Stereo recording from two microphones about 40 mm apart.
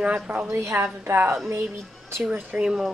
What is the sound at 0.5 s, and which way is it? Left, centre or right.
Speech, right.